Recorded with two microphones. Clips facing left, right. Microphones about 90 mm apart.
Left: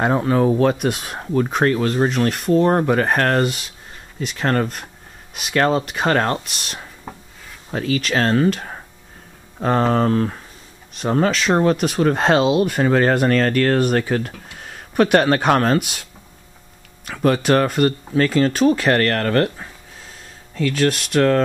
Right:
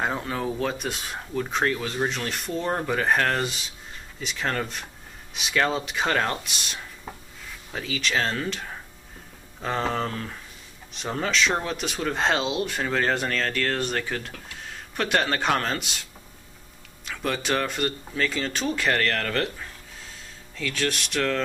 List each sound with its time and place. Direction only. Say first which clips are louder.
0.2 s speech: left 12 dB; 35° left (ahead or behind)
0.5 s speech: left 11 dB; 60° left (ahead or behind)
2.0 s speech: left 11 dB; 45° left (ahead or behind)
6.4 s speech: left 2 dB; centre (ahead or behind)
7.7 s speech: left 7 dB; 50° left (ahead or behind)
17.2 s speech: left 10 dB; 50° left (ahead or behind)